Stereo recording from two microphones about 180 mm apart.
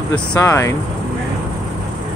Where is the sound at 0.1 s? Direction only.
10° left (ahead or behind).